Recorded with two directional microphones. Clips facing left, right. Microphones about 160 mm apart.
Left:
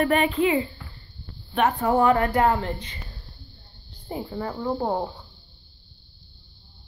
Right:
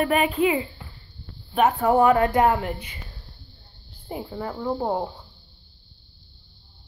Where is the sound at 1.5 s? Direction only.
5° right (ahead or behind).